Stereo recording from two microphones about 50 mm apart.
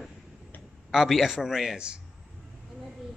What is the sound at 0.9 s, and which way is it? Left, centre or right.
Speech, centre.